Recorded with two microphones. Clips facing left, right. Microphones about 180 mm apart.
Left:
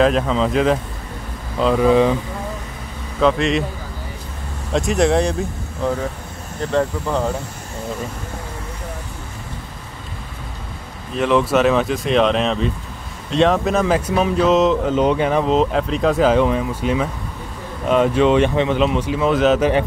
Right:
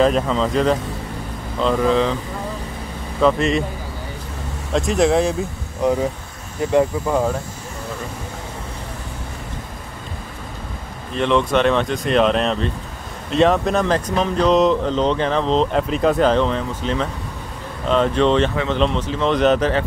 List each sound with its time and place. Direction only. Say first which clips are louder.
0.0 s speech: left 1 dB; centre (ahead or behind)
3.2 s speech: even; centre (ahead or behind)
4.7 s speech: even; centre (ahead or behind)
5.8 s speech: right 3 dB; 15° right (ahead or behind)
11.1 s speech: left 1 dB; 5° left (ahead or behind)